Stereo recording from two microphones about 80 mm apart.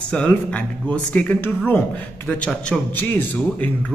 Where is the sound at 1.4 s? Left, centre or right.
Left.